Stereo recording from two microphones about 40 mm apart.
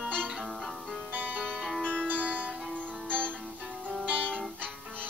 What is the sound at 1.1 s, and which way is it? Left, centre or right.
Music, right.